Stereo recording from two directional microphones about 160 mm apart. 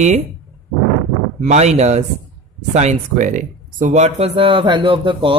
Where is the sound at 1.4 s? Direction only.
45° right (ahead or behind).